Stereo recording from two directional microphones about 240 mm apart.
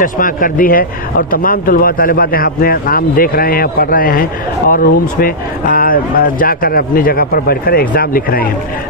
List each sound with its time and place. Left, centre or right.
0.0 s a man's voice: left